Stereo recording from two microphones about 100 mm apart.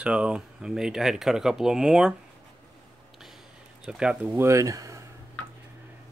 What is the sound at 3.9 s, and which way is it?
Speech, 10° right (ahead or behind).